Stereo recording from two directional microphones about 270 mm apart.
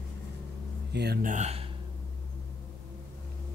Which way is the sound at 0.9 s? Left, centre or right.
Right.